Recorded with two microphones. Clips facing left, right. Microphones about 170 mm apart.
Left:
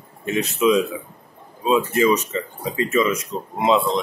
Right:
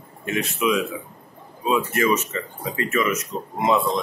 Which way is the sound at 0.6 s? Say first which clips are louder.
Left 5 dB; 25° left (ahead or behind).